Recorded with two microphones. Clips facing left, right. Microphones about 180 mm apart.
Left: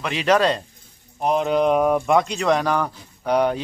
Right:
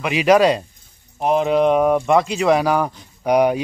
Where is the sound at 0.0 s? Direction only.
10° right (ahead or behind).